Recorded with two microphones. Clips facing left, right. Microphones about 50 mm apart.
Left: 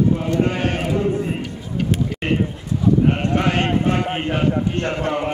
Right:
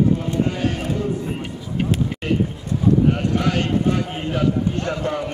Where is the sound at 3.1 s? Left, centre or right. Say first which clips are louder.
Left 1 dB; left.